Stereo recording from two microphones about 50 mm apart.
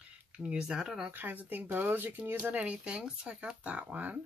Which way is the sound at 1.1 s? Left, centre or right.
Right.